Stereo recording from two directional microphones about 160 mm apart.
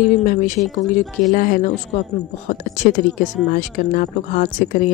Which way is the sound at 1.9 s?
40° left (ahead or behind).